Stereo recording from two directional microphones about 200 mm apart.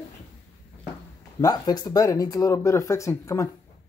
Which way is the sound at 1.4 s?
20° left (ahead or behind).